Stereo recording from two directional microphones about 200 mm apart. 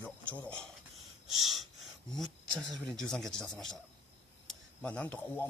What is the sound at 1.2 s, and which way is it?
Gasp, centre (ahead or behind).